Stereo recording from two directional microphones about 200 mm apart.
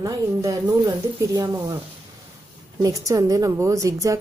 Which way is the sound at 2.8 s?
15° right (ahead or behind).